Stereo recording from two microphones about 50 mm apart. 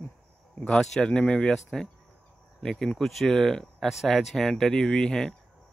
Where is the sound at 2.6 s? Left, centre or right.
Centre.